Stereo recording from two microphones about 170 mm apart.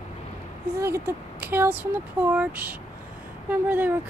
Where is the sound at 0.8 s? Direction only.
15° right (ahead or behind).